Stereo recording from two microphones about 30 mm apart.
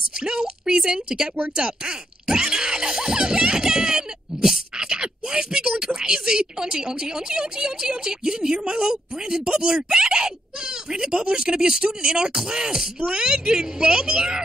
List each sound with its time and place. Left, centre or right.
0.2 s a woman's voice: right
1.6 s music: right
4.7 s a sound: right
5.9 s a woman's voice: right